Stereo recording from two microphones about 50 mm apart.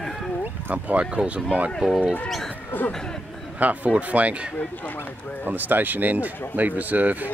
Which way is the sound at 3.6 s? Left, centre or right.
Right.